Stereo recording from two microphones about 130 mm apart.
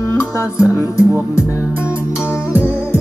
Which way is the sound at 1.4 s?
15° right (ahead or behind).